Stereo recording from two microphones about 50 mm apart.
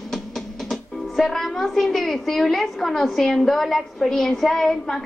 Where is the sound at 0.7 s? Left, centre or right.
Centre.